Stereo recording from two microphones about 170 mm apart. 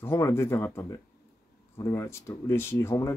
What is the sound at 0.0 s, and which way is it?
Speech, 15° left (ahead or behind).